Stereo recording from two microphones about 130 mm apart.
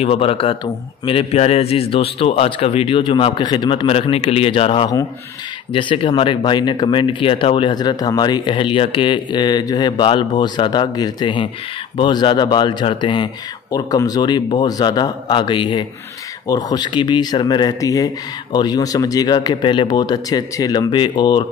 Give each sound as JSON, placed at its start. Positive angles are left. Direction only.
{"t": 0.0, "sound": "a man's voice", "side_deg": 50}